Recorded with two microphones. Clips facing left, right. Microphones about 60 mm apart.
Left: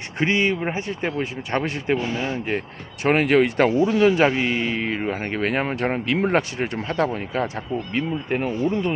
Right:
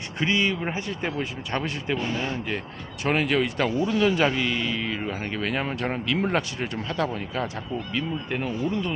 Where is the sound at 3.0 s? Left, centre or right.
Left.